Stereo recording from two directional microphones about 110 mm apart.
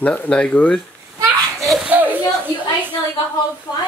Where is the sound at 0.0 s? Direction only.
15° left (ahead or behind).